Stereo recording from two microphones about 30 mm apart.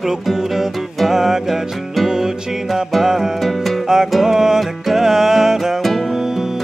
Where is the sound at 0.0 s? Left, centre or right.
Centre.